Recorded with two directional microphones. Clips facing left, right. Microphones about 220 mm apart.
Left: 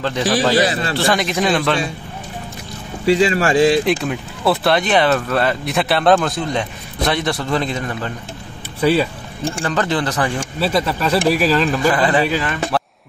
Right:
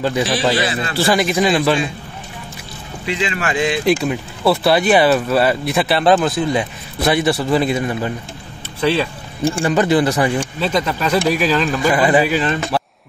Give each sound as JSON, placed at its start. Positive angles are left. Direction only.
{"t": 0.0, "sound": "speech", "side_deg": -10}
{"t": 0.6, "sound": "speech", "side_deg": 40}
{"t": 0.9, "sound": "speech", "side_deg": -5}
{"t": 3.1, "sound": "speech", "side_deg": 40}
{"t": 4.0, "sound": "speech", "side_deg": 0}
{"t": 8.8, "sound": "speech", "side_deg": 5}
{"t": 9.4, "sound": "speech", "side_deg": -10}
{"t": 10.6, "sound": "speech", "side_deg": 5}
{"t": 11.9, "sound": "speech", "side_deg": -10}